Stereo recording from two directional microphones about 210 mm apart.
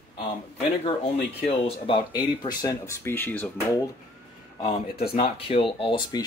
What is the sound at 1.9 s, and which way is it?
Speech, 20° left (ahead or behind).